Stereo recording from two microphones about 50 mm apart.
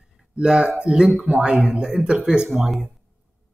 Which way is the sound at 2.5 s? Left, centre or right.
Centre.